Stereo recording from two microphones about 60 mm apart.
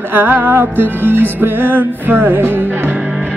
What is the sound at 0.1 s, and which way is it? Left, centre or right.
Music, right.